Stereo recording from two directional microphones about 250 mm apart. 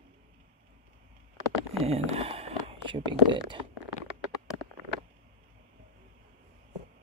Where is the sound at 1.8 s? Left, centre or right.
Right.